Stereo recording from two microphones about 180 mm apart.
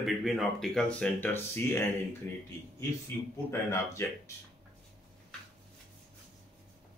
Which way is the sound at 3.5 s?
15° left (ahead or behind).